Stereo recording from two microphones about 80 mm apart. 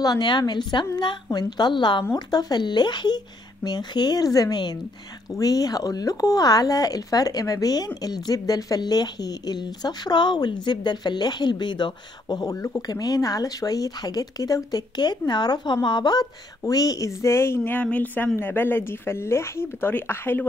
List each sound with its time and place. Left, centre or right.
0.2 s a woman's voice: left
2.1 s a woman's voice: left